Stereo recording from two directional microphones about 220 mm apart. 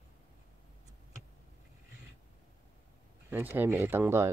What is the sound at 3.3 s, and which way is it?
Speech, 10° right (ahead or behind).